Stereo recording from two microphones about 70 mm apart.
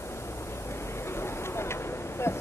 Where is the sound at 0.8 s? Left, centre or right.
Left.